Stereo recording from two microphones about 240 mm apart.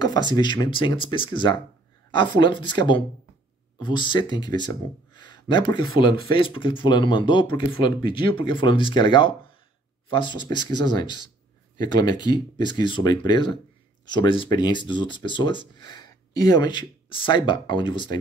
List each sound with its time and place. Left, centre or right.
0.3 s speech: centre